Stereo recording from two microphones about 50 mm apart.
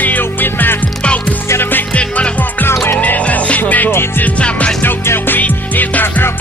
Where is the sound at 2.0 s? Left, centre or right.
Left.